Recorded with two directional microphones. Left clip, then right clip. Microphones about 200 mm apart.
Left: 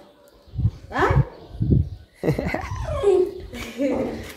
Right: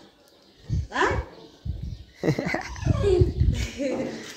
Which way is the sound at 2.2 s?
5° left (ahead or behind).